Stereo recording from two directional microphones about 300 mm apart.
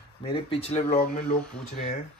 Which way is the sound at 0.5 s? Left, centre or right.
Centre.